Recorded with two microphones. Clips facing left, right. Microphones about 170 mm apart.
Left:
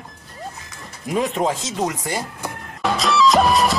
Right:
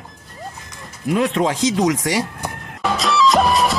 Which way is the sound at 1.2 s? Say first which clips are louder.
Right 4 dB; 85° right.